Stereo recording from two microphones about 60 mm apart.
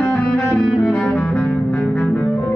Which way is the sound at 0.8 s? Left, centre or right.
Centre.